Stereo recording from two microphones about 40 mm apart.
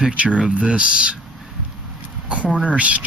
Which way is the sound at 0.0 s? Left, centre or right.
Right.